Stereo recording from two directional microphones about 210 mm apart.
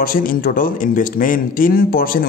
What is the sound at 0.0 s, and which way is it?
Speech, 40° left (ahead or behind).